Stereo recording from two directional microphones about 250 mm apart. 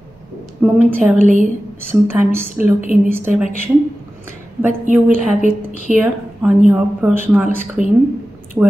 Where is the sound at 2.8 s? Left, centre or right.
Right.